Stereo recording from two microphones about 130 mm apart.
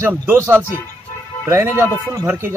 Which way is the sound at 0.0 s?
20° right (ahead or behind).